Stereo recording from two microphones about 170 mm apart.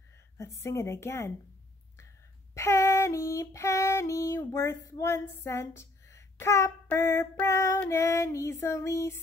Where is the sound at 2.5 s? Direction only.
15° left (ahead or behind).